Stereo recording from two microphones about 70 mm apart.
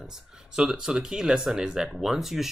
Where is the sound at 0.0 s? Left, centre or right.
Centre.